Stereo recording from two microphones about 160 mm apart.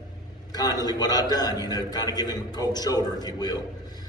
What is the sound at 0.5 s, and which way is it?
A man's voice, 25° left (ahead or behind).